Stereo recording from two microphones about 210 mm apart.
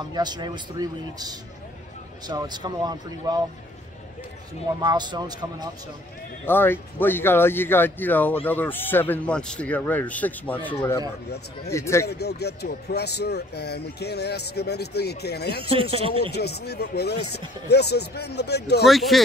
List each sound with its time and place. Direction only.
0.1 s speech: 20° right (ahead or behind)
4.8 s speech: 20° right (ahead or behind)
6.4 s a man's voice: 10° left (ahead or behind)
12.1 s speech: 50° left (ahead or behind)
15.7 s speech: 25° right (ahead or behind)
16.3 s speech: 50° left (ahead or behind)
18.9 s speech: centre (ahead or behind)